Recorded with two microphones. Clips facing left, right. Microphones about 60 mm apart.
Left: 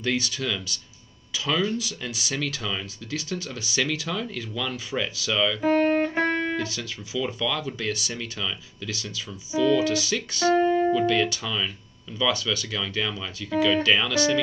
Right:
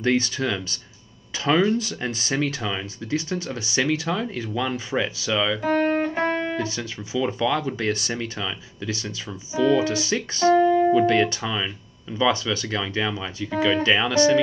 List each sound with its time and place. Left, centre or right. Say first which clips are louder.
0.0 s speech: right 5 dB; right
5.6 s music: left 3 dB; centre
6.5 s speech: right 2 dB; right